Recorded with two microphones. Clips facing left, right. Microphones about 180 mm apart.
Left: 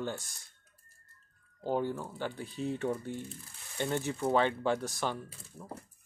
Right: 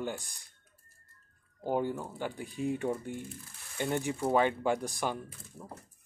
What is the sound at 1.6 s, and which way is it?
Speech, 15° right (ahead or behind).